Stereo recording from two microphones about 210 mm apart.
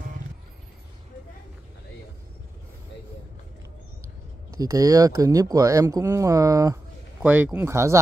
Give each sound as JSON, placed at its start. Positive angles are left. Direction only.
{"t": 4.6, "sound": "speech", "side_deg": -15}
{"t": 7.2, "sound": "speech", "side_deg": -5}